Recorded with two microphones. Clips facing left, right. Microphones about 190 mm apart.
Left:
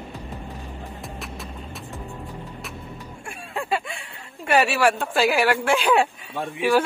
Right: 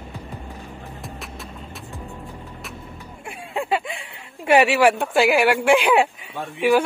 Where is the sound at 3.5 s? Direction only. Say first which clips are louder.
Right 3 dB; 20° right (ahead or behind).